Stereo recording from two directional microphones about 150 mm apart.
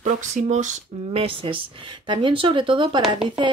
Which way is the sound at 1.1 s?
35° right (ahead or behind).